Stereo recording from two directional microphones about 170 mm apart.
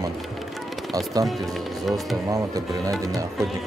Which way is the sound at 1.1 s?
20° right (ahead or behind).